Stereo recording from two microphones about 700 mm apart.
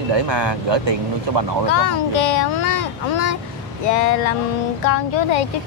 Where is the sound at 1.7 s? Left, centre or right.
Left.